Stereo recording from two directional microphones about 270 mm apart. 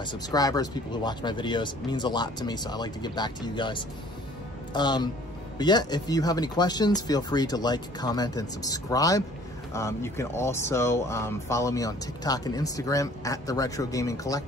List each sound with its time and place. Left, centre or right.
0.0 s speech: centre